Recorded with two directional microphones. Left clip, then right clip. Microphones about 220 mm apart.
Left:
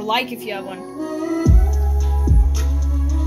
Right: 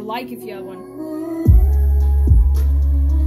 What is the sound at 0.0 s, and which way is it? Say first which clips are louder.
Speech: left 6 dB; 10° left (ahead or behind).